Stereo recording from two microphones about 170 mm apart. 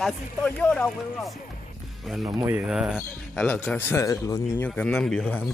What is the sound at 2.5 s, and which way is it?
Speech, 5° right (ahead or behind).